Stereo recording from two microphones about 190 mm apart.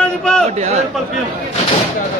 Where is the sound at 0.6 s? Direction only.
35° right (ahead or behind).